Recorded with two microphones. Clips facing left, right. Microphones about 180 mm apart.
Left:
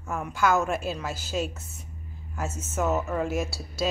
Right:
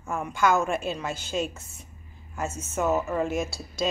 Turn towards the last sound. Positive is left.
turn(degrees=5)  # may be behind; listen again after turning